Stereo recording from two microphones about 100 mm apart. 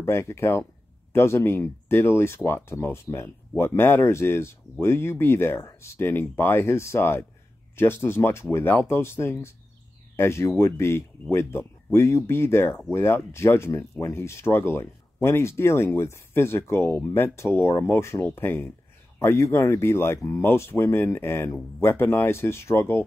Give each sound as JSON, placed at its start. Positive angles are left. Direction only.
{"t": 0.0, "sound": "speech", "side_deg": 25}